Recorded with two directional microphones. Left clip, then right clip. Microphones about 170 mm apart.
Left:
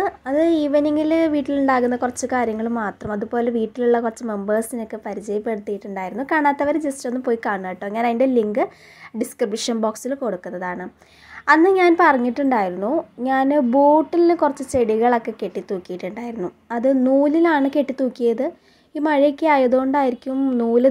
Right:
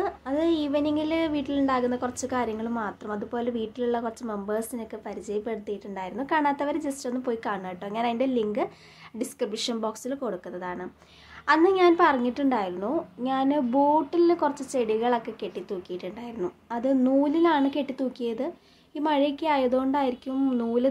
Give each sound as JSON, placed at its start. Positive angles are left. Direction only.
{"t": 0.0, "sound": "speech", "side_deg": 35}